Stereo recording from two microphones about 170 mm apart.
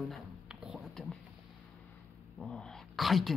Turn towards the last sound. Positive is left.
turn(degrees=0)  # may be behind; listen again after turning